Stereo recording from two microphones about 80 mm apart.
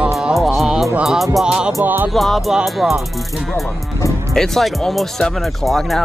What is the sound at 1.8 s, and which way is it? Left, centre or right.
Speech, right.